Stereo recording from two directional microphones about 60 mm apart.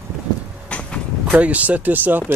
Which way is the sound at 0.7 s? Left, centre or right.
Centre.